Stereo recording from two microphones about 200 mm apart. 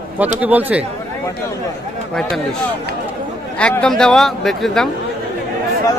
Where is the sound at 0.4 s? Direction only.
10° right (ahead or behind).